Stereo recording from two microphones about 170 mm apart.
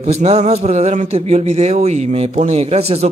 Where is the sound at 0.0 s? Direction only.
40° right (ahead or behind).